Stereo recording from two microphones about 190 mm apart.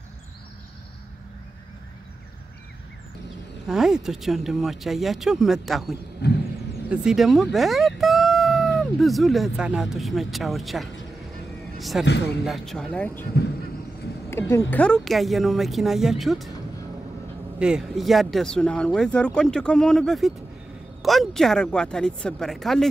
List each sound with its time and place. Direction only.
3.6 s speech: centre (ahead or behind)
6.2 s vehicle: 65° left (ahead or behind)
6.9 s speech: 5° right (ahead or behind)
11.9 s speech: centre (ahead or behind)
14.7 s speech: 5° left (ahead or behind)
17.6 s speech: 5° right (ahead or behind)